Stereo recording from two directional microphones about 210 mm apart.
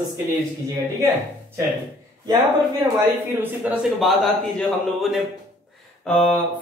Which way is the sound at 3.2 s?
10° right (ahead or behind).